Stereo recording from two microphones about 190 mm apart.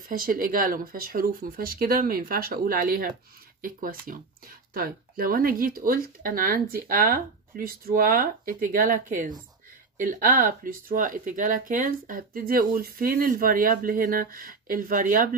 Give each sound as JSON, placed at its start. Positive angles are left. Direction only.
{"t": 0.1, "sound": "speech", "side_deg": -50}